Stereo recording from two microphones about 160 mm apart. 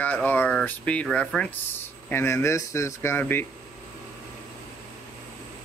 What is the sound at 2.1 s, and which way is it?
Speech, 15° left (ahead or behind).